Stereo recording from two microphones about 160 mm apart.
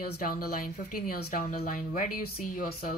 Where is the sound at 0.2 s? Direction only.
65° left (ahead or behind).